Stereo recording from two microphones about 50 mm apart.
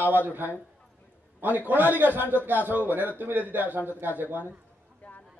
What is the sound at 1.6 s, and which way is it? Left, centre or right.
A man's voice, right.